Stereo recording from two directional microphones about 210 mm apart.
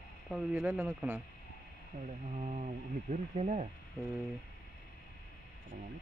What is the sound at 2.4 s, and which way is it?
Speech, 35° right (ahead or behind).